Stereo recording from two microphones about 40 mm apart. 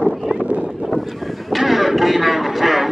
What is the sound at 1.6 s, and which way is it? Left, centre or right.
Music, centre.